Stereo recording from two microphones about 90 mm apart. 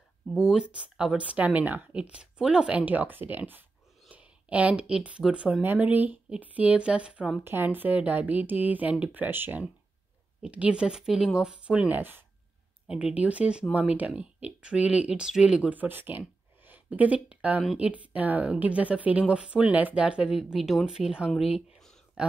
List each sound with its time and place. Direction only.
0.3 s a woman's voice: 10° right (ahead or behind)
7.4 s a woman's voice: 25° right (ahead or behind)
12.0 s speech: 25° right (ahead or behind)
12.8 s a woman's voice: 10° right (ahead or behind)
21.3 s speech: centre (ahead or behind)